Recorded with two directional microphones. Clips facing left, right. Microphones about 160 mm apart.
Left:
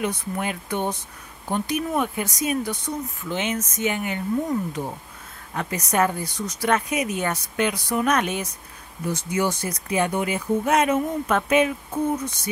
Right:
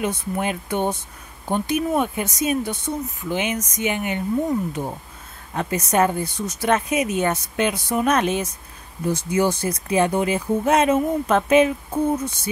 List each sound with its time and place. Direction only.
0.0 s speech: 25° right (ahead or behind)
3.3 s speech: 10° right (ahead or behind); by 11.7 s 25° right (ahead or behind)